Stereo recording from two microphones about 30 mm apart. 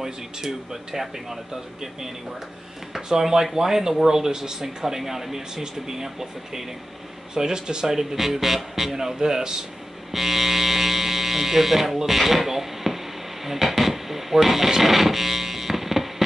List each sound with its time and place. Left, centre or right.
0.0 s speech: centre
3.1 s speech: centre
7.9 s speech: centre
8.9 s speech: centre
10.1 s speech: centre
13.5 s a sound: centre